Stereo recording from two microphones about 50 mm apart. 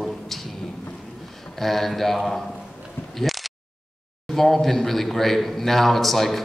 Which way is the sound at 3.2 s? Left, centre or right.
Centre.